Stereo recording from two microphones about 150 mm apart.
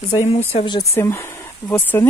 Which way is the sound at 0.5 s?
30° left (ahead or behind).